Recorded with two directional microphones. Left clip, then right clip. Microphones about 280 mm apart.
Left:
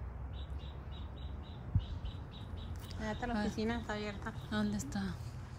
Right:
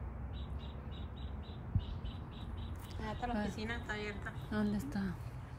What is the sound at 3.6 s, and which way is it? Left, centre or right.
Speech, centre.